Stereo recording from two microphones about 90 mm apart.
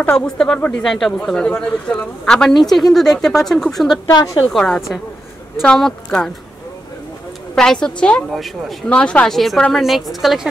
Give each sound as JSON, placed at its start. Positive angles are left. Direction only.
{"t": 0.1, "sound": "speech", "side_deg": 5}
{"t": 4.1, "sound": "a woman's voice", "side_deg": 55}
{"t": 4.5, "sound": "speech", "side_deg": 10}
{"t": 7.5, "sound": "speech", "side_deg": 5}
{"t": 8.8, "sound": "speech", "side_deg": 15}